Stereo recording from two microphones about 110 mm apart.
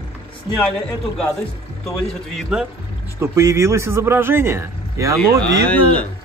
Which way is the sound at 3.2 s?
25° right (ahead or behind).